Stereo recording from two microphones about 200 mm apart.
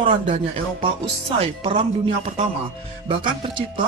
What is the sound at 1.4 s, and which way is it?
Speech, 30° right (ahead or behind).